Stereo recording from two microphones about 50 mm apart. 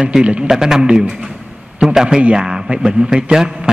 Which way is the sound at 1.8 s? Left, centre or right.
Centre.